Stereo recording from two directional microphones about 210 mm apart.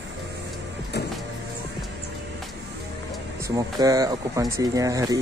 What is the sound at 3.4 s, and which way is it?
Speech, 15° right (ahead or behind).